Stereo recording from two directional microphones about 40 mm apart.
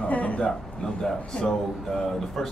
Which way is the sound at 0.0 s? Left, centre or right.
Left.